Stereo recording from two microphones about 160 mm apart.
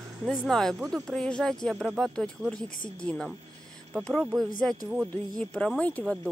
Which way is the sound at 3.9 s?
Centre (ahead or behind).